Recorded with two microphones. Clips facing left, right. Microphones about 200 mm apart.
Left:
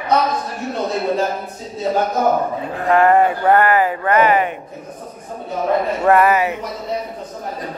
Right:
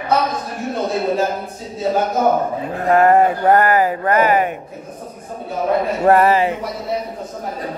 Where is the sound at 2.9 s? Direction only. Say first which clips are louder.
Right 1 dB; 40° right (ahead or behind).